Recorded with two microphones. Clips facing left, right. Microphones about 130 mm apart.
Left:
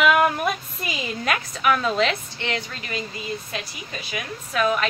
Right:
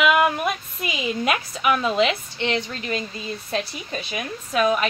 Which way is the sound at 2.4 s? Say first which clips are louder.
Right 4 dB; 20° right (ahead or behind).